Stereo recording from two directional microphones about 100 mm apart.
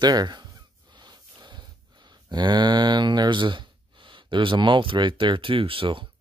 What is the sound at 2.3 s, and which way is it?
Speech, 50° right (ahead or behind).